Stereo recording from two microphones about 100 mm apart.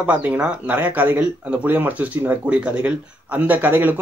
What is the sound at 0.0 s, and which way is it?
A man's voice, 15° right (ahead or behind).